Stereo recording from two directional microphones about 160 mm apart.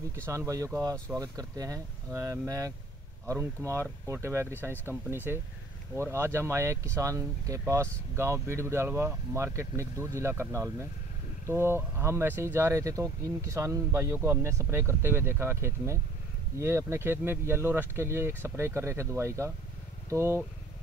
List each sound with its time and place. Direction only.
0.1 s speech: 15° right (ahead or behind)